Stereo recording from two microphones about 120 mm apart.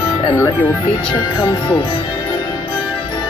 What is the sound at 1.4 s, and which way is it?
Speech, 40° left (ahead or behind).